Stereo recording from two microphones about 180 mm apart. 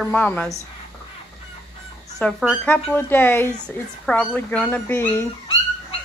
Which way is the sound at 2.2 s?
Centre (ahead or behind).